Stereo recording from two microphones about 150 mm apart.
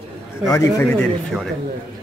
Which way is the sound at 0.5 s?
20° left (ahead or behind).